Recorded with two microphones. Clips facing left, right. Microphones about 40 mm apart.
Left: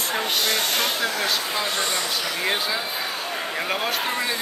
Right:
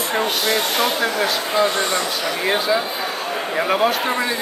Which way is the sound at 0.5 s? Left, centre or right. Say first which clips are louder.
Right 4 dB; right.